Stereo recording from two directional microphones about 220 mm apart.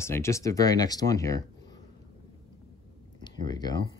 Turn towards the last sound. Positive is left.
turn(degrees=20)  # may be behind; listen again after turning